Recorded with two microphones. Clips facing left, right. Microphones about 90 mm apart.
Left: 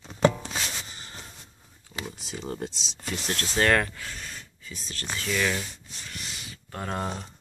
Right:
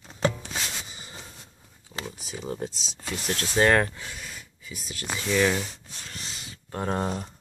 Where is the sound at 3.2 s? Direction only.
15° right (ahead or behind).